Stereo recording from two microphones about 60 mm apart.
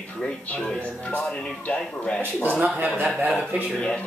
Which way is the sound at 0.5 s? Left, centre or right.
Left.